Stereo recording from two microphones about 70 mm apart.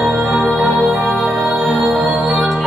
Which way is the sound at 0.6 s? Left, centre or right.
Centre.